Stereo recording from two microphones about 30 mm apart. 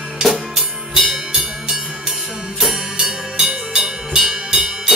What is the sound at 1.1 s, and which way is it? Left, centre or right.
Music, right.